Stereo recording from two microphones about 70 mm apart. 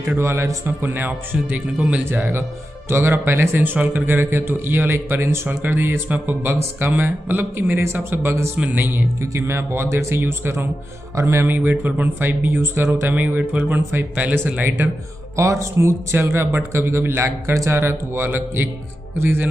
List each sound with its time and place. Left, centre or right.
0.2 s speech: right
11.1 s speech: right
11.4 s speech: right
13.1 s speech: right
15.3 s speech: right